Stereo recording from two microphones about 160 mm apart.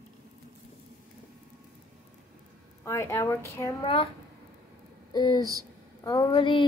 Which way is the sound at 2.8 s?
15° left (ahead or behind).